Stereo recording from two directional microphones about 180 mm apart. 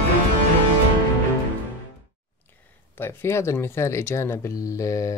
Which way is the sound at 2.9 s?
15° left (ahead or behind).